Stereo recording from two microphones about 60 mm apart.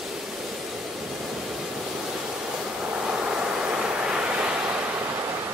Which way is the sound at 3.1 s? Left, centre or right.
Centre.